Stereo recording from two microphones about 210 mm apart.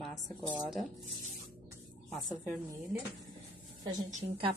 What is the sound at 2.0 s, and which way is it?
Speech, centre (ahead or behind).